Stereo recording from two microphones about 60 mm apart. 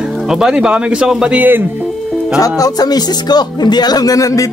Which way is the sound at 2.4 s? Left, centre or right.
Left.